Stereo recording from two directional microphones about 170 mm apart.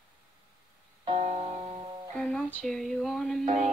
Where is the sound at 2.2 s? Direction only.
5° left (ahead or behind).